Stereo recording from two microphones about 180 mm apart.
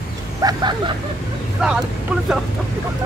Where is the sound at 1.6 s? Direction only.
5° right (ahead or behind).